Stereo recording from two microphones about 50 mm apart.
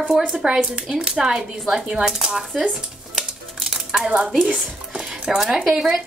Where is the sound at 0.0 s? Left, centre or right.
Centre.